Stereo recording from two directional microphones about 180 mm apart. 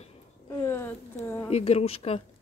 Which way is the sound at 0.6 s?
15° left (ahead or behind).